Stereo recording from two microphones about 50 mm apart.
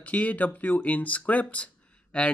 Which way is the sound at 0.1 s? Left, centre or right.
Left.